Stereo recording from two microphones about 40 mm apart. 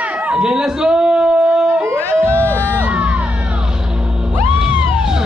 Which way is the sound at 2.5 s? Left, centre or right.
Right.